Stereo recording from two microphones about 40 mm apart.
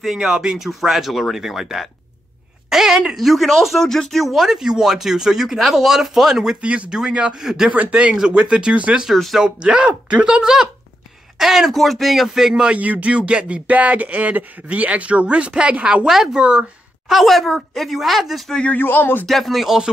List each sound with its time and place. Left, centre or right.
0.0 s a woman's voice: centre
3.8 s speech: centre
4.6 s speech: centre
6.6 s speech: right
6.9 s speech: centre
7.9 s speech: right
9.1 s speech: centre
9.6 s speech: right; by 12.6 s centre
12.7 s speech: right
16.1 s speech: centre
16.3 s speech: right
17.1 s speech: centre
18.7 s speech: left
19.2 s speech: centre